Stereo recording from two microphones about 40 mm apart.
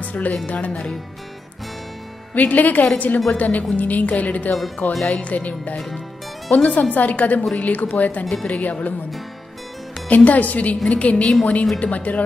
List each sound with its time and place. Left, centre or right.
0.0 s a woman's voice: left
2.3 s a woman's voice: left
10.0 s a woman's voice: left